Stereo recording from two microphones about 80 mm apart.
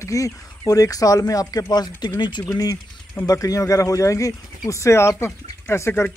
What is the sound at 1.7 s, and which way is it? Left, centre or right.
Speech, left.